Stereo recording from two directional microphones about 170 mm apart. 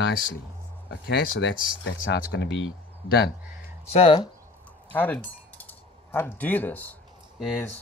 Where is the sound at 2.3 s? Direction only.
90° left.